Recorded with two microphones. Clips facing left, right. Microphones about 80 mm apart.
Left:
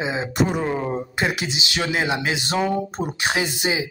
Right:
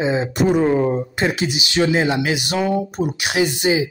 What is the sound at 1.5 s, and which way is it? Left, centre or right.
Speech, left.